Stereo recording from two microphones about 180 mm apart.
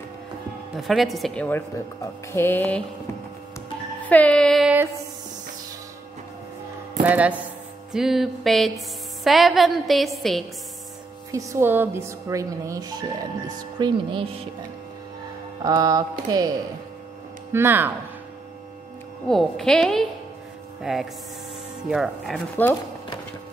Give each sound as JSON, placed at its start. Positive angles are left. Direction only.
{"t": 0.7, "sound": "a woman's voice", "side_deg": 0}
{"t": 2.3, "sound": "mantra", "side_deg": 10}
{"t": 4.1, "sound": "a woman's voice", "side_deg": 5}
{"t": 7.1, "sound": "a woman's voice", "side_deg": -5}
{"t": 11.3, "sound": "speech", "side_deg": -15}
{"t": 13.6, "sound": "a sound", "side_deg": -25}
{"t": 15.6, "sound": "a sound", "side_deg": -20}
{"t": 17.5, "sound": "speech", "side_deg": -15}
{"t": 19.2, "sound": "a woman's voice", "side_deg": 5}